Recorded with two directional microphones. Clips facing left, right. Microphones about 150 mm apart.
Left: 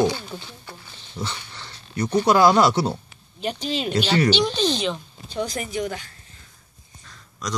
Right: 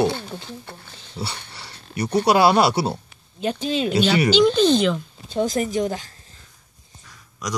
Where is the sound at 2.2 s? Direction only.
70° right (ahead or behind).